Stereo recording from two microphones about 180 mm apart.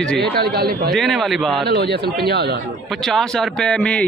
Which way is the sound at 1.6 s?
65° right (ahead or behind).